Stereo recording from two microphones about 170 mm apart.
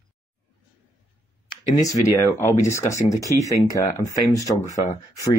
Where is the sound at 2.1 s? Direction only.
15° left (ahead or behind).